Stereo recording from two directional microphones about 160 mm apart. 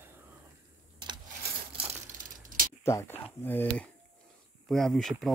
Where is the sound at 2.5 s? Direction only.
60° right (ahead or behind).